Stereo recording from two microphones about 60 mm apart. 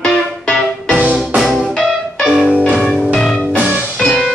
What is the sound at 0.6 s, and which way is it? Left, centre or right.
Music, centre.